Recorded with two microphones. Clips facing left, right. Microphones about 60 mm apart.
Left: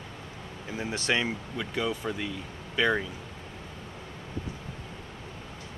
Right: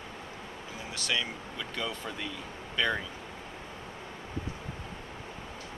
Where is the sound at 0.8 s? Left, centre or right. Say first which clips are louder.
Left 5 dB; left.